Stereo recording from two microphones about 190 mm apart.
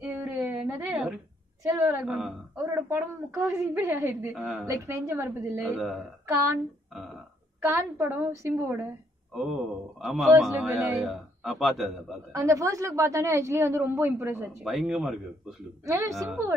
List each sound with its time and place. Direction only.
0.0 s a sound: 10° right (ahead or behind)
3.4 s a woman's voice: 10° right (ahead or behind)
4.6 s a woman's voice: 15° right (ahead or behind)
7.6 s a woman's voice: 15° right (ahead or behind)
9.3 s speech: centre (ahead or behind)
12.3 s a woman's voice: 15° right (ahead or behind)
14.6 s speech: centre (ahead or behind)
15.8 s a woman's voice: 15° right (ahead or behind)